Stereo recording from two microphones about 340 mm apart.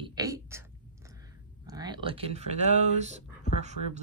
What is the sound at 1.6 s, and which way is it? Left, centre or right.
Speech, centre.